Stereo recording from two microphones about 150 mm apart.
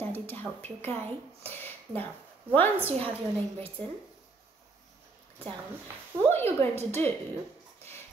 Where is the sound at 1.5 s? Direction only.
15° left (ahead or behind).